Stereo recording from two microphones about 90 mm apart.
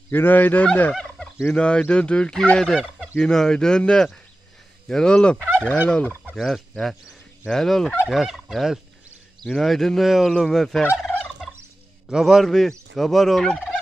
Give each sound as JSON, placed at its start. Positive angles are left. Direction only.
{"t": 0.1, "sound": "speech", "side_deg": 20}
{"t": 0.9, "sound": "turkey", "side_deg": 10}
{"t": 1.5, "sound": "fowl", "side_deg": 10}
{"t": 6.3, "sound": "fowl", "side_deg": 0}
{"t": 8.1, "sound": "speech", "side_deg": 0}
{"t": 12.1, "sound": "speech", "side_deg": -5}